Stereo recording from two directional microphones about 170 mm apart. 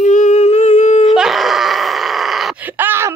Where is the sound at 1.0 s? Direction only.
Centre (ahead or behind).